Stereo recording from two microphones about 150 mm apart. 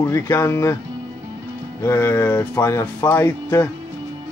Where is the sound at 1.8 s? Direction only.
15° left (ahead or behind).